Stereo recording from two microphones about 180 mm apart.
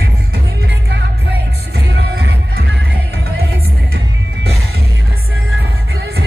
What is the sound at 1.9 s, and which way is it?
Music, 70° right (ahead or behind).